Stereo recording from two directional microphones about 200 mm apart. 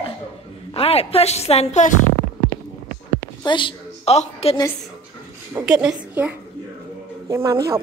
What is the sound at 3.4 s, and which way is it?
A woman's voice, 25° left (ahead or behind).